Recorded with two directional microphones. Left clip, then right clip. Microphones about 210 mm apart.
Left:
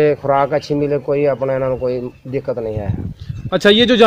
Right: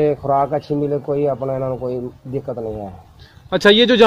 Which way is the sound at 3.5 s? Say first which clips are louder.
Even; 50° left (ahead or behind).